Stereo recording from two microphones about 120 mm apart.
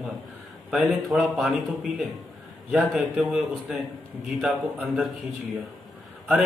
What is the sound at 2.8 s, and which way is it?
Speech, 5° right (ahead or behind).